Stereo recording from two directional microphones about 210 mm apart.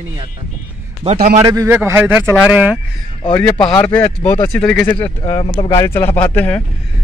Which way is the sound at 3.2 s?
20° left (ahead or behind).